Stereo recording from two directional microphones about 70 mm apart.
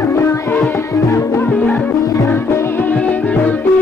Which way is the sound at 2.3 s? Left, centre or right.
Left.